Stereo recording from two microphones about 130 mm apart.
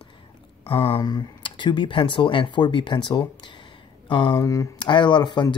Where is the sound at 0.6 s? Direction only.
45° left (ahead or behind).